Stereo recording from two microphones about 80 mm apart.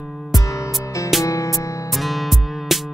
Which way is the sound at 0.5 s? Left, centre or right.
Left.